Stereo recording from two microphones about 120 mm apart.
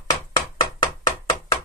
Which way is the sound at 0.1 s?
35° left (ahead or behind).